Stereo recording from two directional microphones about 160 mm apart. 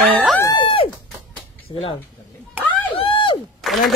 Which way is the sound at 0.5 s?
30° left (ahead or behind).